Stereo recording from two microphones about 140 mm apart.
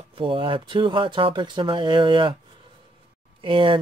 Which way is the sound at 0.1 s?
40° right (ahead or behind).